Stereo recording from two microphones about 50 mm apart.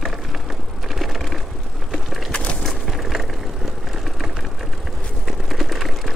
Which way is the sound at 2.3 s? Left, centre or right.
Left.